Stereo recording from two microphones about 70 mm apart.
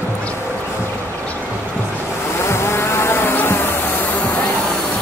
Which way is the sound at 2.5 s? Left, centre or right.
Left.